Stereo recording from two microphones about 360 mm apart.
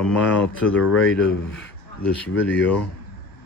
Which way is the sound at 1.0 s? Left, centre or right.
Left.